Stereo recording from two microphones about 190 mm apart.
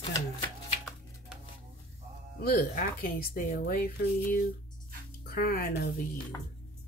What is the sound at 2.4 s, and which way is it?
Speech, 50° left (ahead or behind).